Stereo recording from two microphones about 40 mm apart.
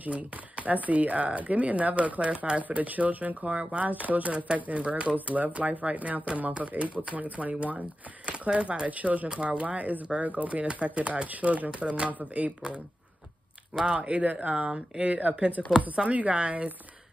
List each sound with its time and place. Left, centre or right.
0.0 s speech: right
3.4 s speech: right
3.9 s speech: right
4.7 s speech: right
5.1 s speech: right
9.3 s speech: right
12.1 s speech: right
13.8 s speech: right